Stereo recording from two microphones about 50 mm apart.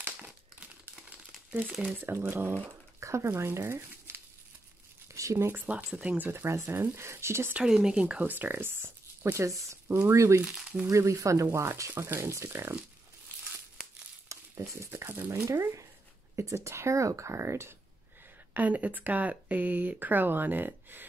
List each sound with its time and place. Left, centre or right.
1.8 s speech: right
2.3 s speech: right
3.0 s speech: right
5.0 s a sound: right
5.9 s speech: right
6.3 s speech: right
7.6 s speech: centre
8.2 s speech: right
13.8 s crumpling: centre
14.3 s speech: right
15.4 s speech: right
16.3 s speech: right
18.5 s speech: right